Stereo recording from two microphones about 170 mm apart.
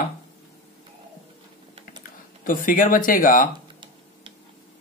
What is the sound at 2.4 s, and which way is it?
Speech, 55° left (ahead or behind).